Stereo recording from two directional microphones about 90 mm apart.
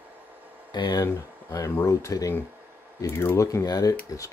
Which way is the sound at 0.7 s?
50° left (ahead or behind).